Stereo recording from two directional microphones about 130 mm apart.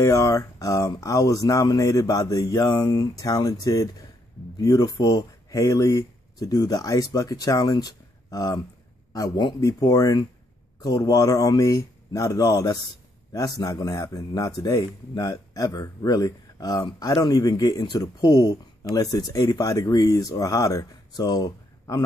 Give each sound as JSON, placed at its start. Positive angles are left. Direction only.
{"t": 0.0, "sound": "a man's voice", "side_deg": 25}